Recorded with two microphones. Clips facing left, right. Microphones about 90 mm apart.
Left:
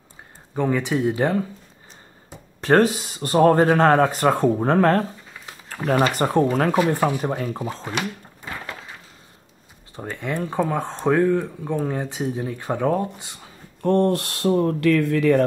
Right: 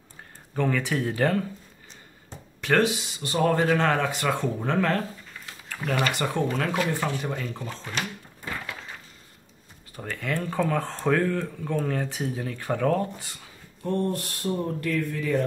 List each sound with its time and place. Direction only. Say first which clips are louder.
0.6 s speech: left 4 dB; 15° left (ahead or behind)
2.6 s speech: left 6 dB; 40° left (ahead or behind)
9.9 s speech: left 3 dB; 20° left (ahead or behind)
13.8 s speech: left 8 dB; 70° left (ahead or behind)